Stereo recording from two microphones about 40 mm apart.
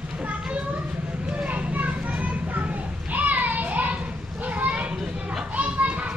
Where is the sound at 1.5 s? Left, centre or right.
Right.